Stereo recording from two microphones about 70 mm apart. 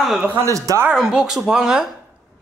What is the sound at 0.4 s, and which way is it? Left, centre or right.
Speech, right.